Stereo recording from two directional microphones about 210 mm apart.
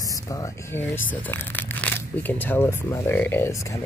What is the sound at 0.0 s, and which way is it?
Speech, 15° left (ahead or behind).